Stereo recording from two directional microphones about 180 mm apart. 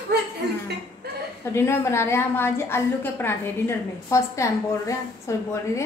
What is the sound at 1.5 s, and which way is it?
A woman's voice, 15° left (ahead or behind).